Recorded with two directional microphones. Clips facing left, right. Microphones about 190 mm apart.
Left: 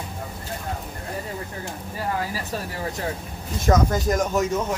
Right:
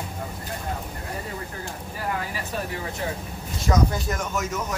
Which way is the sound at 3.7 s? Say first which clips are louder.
Left 4 dB; 50° left (ahead or behind).